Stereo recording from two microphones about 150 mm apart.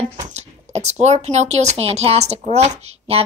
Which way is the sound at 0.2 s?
50° right (ahead or behind).